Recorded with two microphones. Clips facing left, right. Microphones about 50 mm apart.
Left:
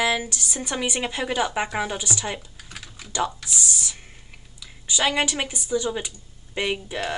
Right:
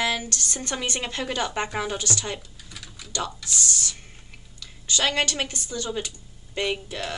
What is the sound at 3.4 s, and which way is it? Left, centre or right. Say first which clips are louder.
A woman's voice: even; centre.